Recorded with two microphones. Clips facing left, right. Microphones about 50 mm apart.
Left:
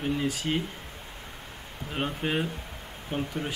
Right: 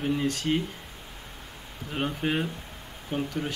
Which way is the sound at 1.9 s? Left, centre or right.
Centre.